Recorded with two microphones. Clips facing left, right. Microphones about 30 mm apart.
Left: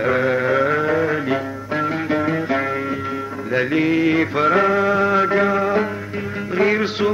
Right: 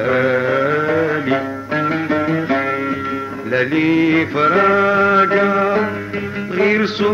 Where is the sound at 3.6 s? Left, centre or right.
Centre.